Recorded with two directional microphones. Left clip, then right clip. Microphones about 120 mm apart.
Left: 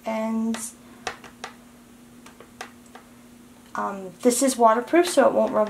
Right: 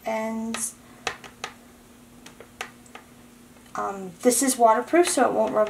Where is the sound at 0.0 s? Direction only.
15° left (ahead or behind).